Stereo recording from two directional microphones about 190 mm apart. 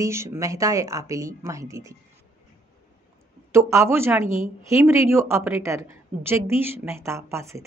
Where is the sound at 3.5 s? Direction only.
15° right (ahead or behind).